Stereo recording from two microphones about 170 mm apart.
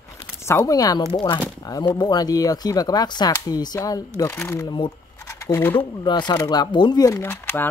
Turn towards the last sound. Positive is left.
turn(degrees=15)  # may be behind; listen again after turning